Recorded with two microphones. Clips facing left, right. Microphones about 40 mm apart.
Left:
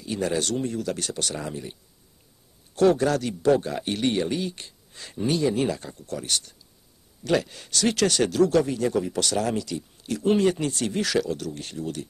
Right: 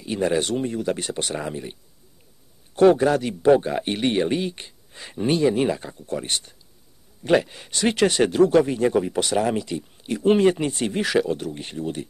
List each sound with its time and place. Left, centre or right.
0.0 s speech: right